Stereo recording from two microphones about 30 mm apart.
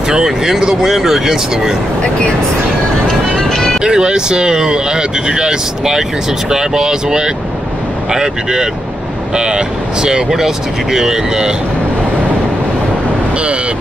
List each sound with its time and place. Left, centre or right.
0.8 s speech: centre
3.5 s music: left
3.8 s speech: right
10.3 s speech: centre